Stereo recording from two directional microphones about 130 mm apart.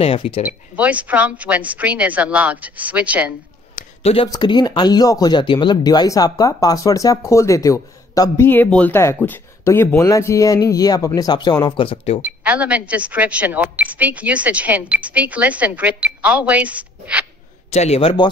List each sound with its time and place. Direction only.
0.0 s speech: 45° left (ahead or behind)
0.4 s speech: 10° right (ahead or behind)
4.0 s speech: 45° left (ahead or behind)
4.3 s speech: 35° left (ahead or behind)
8.5 s speech: 10° left (ahead or behind); by 12.2 s 45° left (ahead or behind)
12.2 s speech: 15° right (ahead or behind)
17.6 s a man's voice: 55° left (ahead or behind)